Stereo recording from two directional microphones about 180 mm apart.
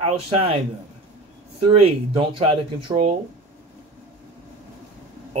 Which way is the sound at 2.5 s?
30° right (ahead or behind).